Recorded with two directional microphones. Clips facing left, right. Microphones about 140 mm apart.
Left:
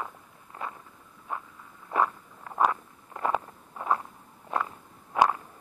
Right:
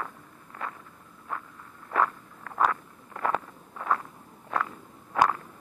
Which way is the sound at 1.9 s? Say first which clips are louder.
Even; 20° left (ahead or behind).